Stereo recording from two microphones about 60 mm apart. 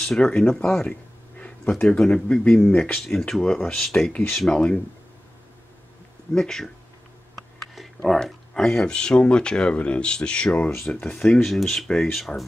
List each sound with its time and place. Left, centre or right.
0.0 s speech: centre
1.9 s speech: centre
3.0 s speech: centre
6.3 s speech: centre
7.7 s speech: centre
11.4 s speech: centre